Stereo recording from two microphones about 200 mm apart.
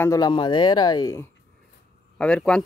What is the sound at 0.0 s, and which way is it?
Speech, 20° left (ahead or behind).